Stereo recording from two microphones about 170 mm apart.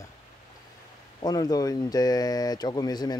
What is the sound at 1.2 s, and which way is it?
Speech, 20° left (ahead or behind).